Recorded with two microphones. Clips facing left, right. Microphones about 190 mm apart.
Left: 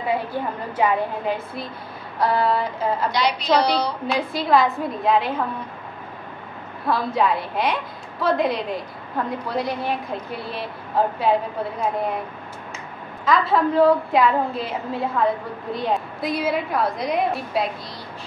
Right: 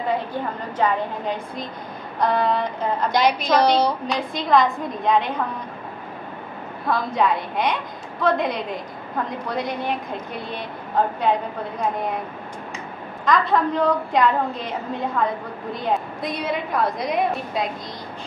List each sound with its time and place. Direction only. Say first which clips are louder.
0.1 s a woman's voice: left 2 dB; 10° left (ahead or behind)
3.1 s a woman's voice: right 3 dB; 50° right (ahead or behind)
4.3 s a woman's voice: right 1 dB; 5° left (ahead or behind)
6.9 s a woman's voice: even; centre (ahead or behind)
13.2 s a woman's voice: even; 5° left (ahead or behind)